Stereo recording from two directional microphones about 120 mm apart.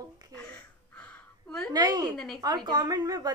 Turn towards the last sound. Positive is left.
turn(degrees=-30)  # may be behind; listen again after turning